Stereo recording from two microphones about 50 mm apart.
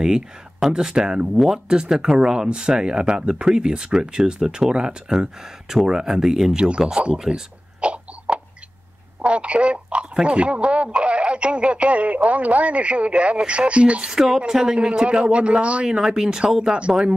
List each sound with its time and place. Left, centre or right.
0.0 s speech: centre
7.8 s a sound: right
9.2 s speech: right
14.1 s speech: centre
16.7 s speech: right